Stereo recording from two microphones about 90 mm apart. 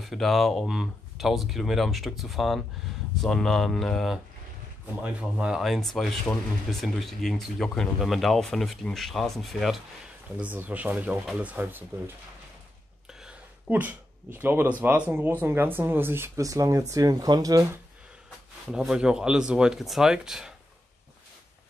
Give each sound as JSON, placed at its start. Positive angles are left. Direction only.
{"t": 0.0, "sound": "speech", "side_deg": 0}
{"t": 5.0, "sound": "speech", "side_deg": -10}
{"t": 5.6, "sound": "speech", "side_deg": 0}
{"t": 10.3, "sound": "speech", "side_deg": -15}
{"t": 13.1, "sound": "a sound", "side_deg": -5}
{"t": 13.7, "sound": "speech", "side_deg": -20}
{"t": 16.3, "sound": "speech", "side_deg": -35}
{"t": 18.7, "sound": "speech", "side_deg": -10}